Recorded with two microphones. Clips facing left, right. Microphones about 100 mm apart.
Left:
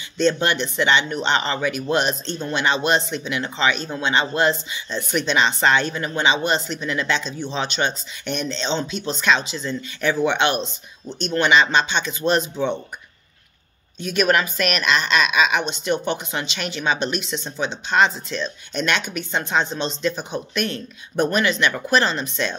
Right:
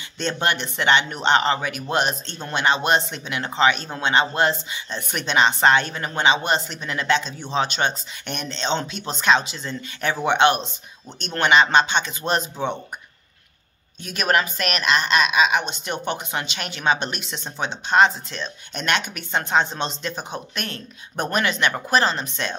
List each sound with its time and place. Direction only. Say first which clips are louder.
0.2 s speech: left 4 dB; 50° right (ahead or behind)
14.0 s speech: left 2 dB; 35° right (ahead or behind)